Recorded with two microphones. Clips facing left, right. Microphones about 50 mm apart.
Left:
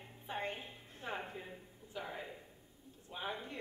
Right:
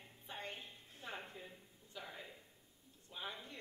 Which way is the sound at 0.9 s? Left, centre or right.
Centre.